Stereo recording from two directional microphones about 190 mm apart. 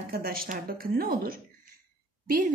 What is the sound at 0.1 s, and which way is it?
A woman's voice, 50° right (ahead or behind).